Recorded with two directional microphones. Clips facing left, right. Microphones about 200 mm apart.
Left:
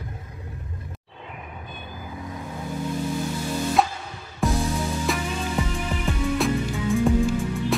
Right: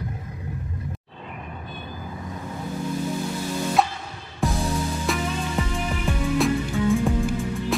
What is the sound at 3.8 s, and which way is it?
Music, centre (ahead or behind).